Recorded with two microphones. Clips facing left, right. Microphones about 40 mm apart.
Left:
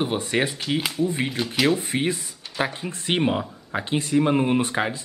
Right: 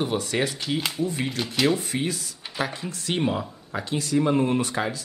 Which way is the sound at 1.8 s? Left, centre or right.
Left.